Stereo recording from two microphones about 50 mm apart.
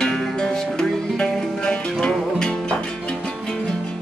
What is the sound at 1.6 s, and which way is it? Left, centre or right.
Music, centre.